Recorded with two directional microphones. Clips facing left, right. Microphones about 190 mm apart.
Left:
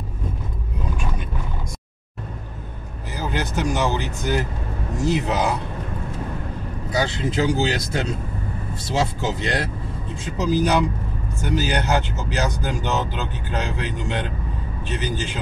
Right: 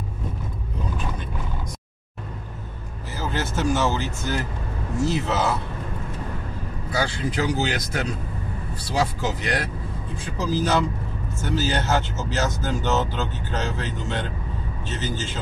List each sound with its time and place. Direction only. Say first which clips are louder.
3.1 s speech: left 1 dB; 15° left (ahead or behind)
6.9 s speech: left 2 dB; 20° left (ahead or behind)